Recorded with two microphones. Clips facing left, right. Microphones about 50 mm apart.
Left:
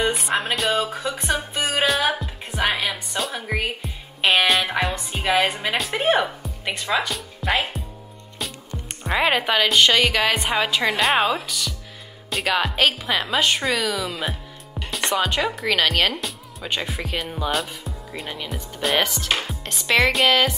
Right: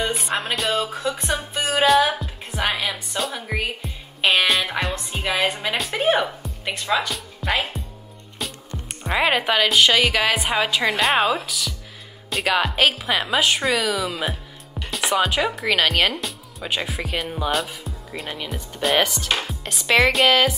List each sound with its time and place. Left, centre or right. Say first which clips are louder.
0.0 s music: left 2 dB; centre
1.0 s music: even; centre
1.8 s speech: right 6 dB; centre
2.1 s music: left 1 dB; centre
5.1 s a woman's voice: left 2 dB; centre
8.4 s music: even; centre
9.0 s speech: even; centre